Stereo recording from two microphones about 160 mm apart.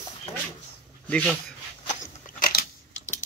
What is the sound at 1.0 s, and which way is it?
Speech, 10° left (ahead or behind).